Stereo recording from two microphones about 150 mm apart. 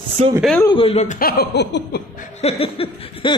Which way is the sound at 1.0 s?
75° left (ahead or behind).